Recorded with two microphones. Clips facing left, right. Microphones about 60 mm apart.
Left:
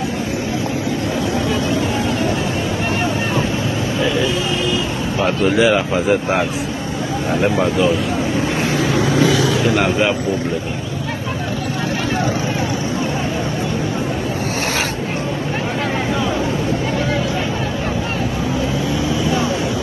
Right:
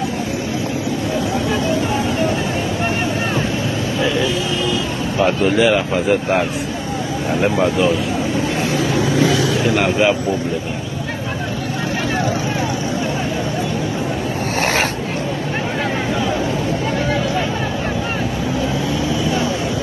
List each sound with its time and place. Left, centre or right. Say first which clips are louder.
5.2 s a man's voice: even; centre
9.8 s a man's voice: right 1 dB; centre
14.6 s vehicle: right 5 dB; right